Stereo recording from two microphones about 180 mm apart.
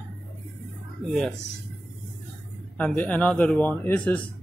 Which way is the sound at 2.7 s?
10° left (ahead or behind).